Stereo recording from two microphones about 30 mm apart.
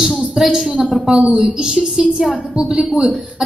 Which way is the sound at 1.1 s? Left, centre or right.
Right.